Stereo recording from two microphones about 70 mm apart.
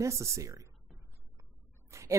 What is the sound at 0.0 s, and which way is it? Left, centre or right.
Speech, right.